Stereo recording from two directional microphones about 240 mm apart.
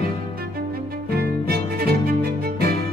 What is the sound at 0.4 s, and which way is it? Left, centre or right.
Music, right.